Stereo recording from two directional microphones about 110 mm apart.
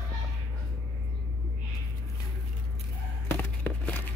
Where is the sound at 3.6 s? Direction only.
15° left (ahead or behind).